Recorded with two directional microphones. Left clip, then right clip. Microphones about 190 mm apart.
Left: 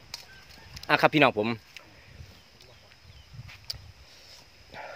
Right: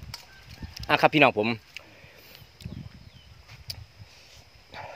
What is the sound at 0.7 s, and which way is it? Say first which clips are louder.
Speech: right 1 dB; 5° right (ahead or behind).